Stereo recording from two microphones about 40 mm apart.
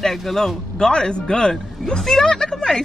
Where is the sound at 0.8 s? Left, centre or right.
Left.